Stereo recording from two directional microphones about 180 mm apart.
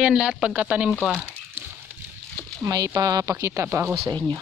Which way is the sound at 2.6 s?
20° right (ahead or behind).